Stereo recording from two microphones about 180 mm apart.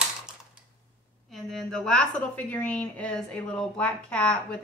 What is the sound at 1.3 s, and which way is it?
A woman's voice, centre (ahead or behind).